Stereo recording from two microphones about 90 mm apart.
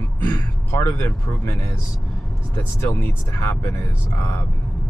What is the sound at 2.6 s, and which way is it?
Speech, 25° left (ahead or behind).